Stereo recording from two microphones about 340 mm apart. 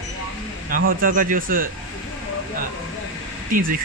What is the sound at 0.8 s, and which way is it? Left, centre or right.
Speech, right.